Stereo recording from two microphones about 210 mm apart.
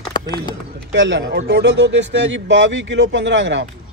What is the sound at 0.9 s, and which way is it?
A man's voice, 60° right (ahead or behind).